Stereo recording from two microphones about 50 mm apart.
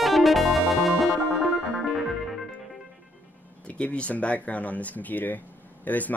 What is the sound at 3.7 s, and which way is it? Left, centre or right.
Speech, left.